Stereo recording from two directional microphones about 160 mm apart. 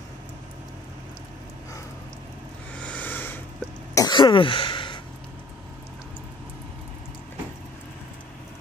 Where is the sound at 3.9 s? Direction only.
25° left (ahead or behind).